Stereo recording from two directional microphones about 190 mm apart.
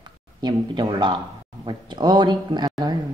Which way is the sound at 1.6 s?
25° right (ahead or behind).